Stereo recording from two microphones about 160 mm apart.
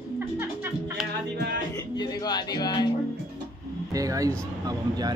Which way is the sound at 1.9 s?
25° left (ahead or behind).